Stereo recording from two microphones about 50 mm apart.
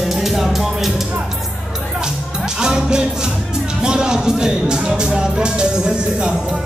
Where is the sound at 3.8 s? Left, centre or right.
Centre.